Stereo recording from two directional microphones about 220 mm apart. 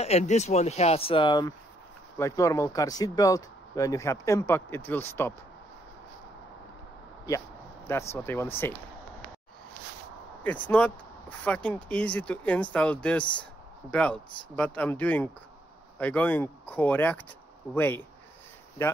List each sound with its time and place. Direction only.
0.0 s speech: 30° left (ahead or behind); by 5.3 s 10° left (ahead or behind)
7.2 s a sound: 10° left (ahead or behind)
8.1 s speech: 10° left (ahead or behind)
10.4 s speech: 5° left (ahead or behind)